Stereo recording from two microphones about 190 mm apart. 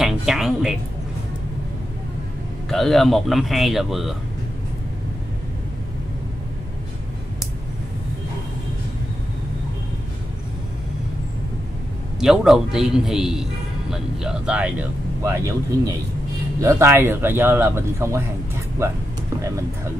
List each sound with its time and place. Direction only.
0.0 s a sound: 5° right (ahead or behind)
2.7 s a man's voice: centre (ahead or behind)
12.2 s a man's voice: centre (ahead or behind)